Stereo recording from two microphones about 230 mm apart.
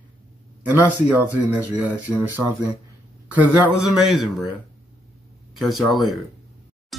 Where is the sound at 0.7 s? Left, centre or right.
Centre.